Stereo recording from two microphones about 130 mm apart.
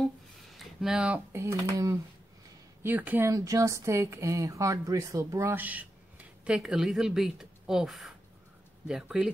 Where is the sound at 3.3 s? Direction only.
25° right (ahead or behind).